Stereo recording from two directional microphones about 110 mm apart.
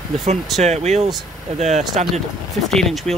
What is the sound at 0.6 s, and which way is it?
Speech, 85° right.